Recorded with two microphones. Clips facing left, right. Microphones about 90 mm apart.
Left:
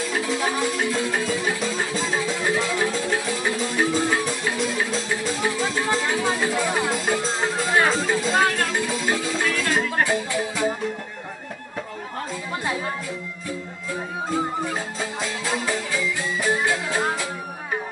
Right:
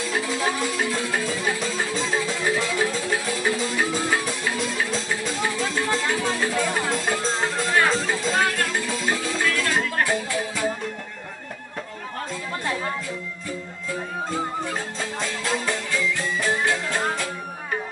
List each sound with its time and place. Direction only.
0.1 s music: centre (ahead or behind)
14.3 s music: 5° left (ahead or behind)